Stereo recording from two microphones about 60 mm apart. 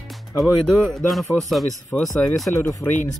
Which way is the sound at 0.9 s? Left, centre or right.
Centre.